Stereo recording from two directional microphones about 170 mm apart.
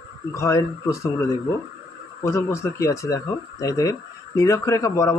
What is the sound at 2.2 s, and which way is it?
Speech, 15° left (ahead or behind).